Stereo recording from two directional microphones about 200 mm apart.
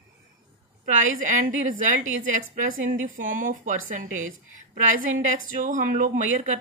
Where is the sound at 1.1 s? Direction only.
40° right (ahead or behind).